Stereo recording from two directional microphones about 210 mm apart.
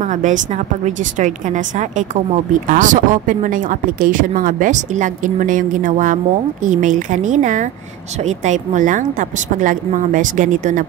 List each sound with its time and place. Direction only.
0.0 s speech: 35° right (ahead or behind)